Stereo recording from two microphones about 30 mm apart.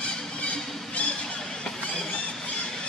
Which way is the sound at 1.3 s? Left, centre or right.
Left.